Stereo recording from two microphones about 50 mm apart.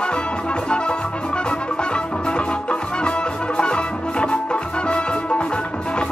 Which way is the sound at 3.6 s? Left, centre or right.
Centre.